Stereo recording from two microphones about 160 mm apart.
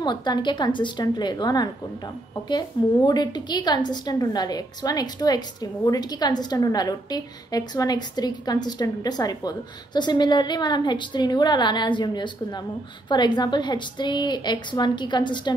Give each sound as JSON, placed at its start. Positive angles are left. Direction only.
{"t": 0.0, "sound": "a woman's voice", "side_deg": 30}